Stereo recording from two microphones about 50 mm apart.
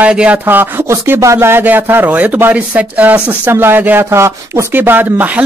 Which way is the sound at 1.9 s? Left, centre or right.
Right.